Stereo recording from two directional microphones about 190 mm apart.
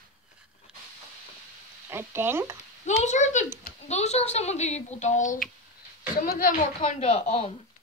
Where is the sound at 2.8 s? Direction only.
40° left (ahead or behind).